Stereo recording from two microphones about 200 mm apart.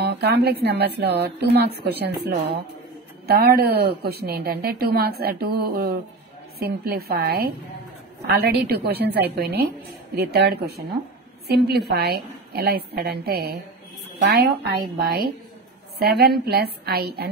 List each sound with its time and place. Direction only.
0.0 s speech: 55° right (ahead or behind)